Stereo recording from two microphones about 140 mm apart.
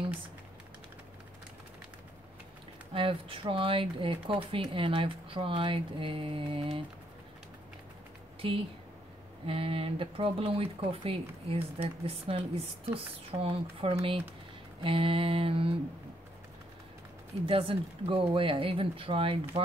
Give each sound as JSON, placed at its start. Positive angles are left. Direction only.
{"t": 2.9, "sound": "speech", "side_deg": -40}
{"t": 9.5, "sound": "speech", "side_deg": -45}
{"t": 17.5, "sound": "speech", "side_deg": -40}